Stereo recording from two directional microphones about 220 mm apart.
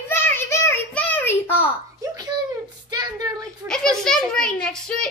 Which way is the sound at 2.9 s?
20° right (ahead or behind).